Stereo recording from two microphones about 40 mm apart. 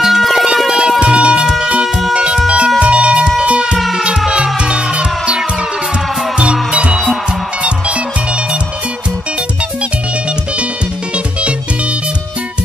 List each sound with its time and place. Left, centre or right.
0.0 s music: centre
0.7 s music: centre